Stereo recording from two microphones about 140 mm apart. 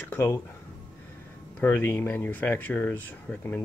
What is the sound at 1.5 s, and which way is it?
Speech, 15° left (ahead or behind).